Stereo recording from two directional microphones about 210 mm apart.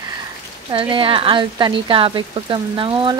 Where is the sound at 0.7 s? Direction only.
25° right (ahead or behind).